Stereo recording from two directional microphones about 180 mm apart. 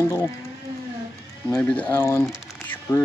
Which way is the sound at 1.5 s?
5° left (ahead or behind).